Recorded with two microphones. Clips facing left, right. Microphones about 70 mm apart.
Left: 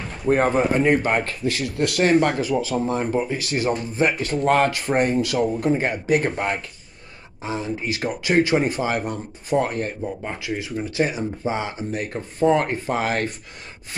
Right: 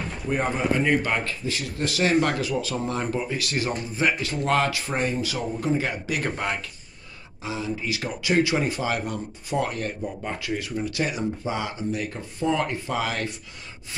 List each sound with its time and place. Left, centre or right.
0.3 s speech: left
1.5 s speech: left
2.0 s speech: left
2.3 s speech: left
10.2 s speech: left
11.9 s speech: left